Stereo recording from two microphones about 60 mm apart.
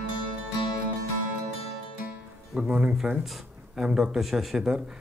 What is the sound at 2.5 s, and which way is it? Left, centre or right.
Speech, right.